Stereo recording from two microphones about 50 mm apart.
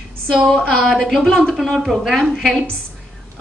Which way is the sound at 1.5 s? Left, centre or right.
Centre.